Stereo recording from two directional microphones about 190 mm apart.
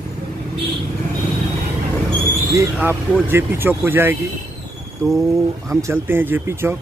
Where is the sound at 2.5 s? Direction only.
15° right (ahead or behind).